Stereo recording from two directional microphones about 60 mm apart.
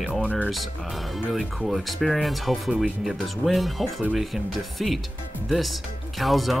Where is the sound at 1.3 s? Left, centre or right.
Centre.